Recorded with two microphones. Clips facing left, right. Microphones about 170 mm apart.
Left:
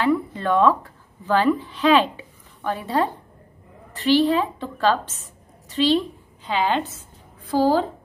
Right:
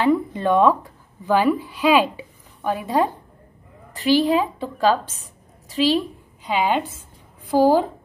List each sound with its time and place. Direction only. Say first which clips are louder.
0.0 s a woman's voice: right 2 dB; 20° right (ahead or behind)